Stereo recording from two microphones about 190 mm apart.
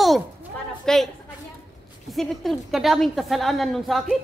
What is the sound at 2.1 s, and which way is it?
A woman's voice, centre (ahead or behind).